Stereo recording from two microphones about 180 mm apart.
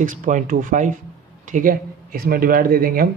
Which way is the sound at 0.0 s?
45° right (ahead or behind).